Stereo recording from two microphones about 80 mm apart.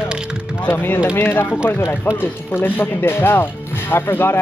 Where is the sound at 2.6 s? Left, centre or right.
Left.